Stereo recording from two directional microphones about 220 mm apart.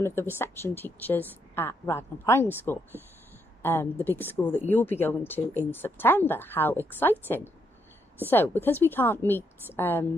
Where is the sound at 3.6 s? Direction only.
10° left (ahead or behind).